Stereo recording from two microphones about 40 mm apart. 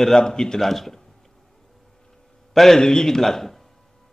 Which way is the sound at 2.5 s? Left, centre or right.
Centre.